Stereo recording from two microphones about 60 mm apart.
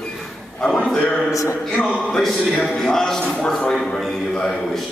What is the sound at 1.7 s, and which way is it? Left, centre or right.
A man's voice, centre.